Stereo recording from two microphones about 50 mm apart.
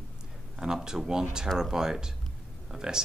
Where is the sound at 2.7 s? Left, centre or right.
Centre.